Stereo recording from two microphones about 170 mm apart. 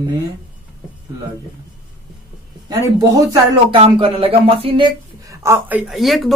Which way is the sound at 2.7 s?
20° right (ahead or behind).